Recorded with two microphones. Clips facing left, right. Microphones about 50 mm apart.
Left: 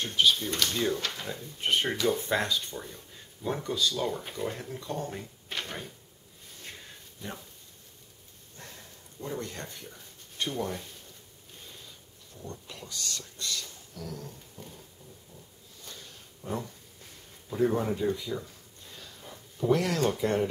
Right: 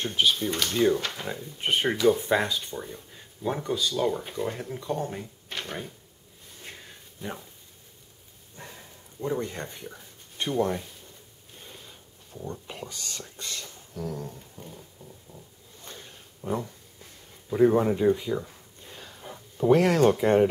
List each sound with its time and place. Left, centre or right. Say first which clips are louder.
0.0 s speech: right 1 dB; centre
6.6 s a sound: right 2 dB; centre
8.5 s speech: right 3 dB; centre
12.6 s speech: right 2 dB; right
14.6 s speech: right 1 dB; centre
15.3 s dog: right 3 dB; right
17.5 s speech: right 6 dB; right